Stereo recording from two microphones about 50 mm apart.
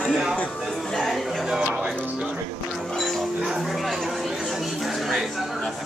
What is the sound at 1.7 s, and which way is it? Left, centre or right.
Music, right.